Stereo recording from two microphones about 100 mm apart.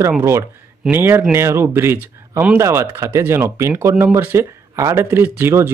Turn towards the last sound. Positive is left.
turn(degrees=-25)  # may be behind; listen again after turning